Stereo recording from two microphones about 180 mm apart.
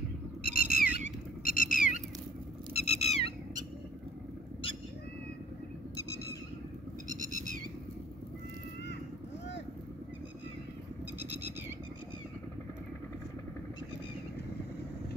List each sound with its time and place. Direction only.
0.4 s squawk: 55° left (ahead or behind); by 3.3 s 35° left (ahead or behind)
5.9 s squawk: 20° left (ahead or behind)
7.1 s goat: 45° right (ahead or behind)